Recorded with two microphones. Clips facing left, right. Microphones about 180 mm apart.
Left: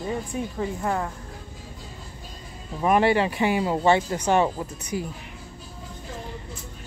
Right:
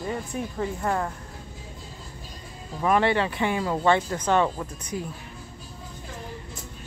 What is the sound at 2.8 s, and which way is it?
Speech, 15° left (ahead or behind).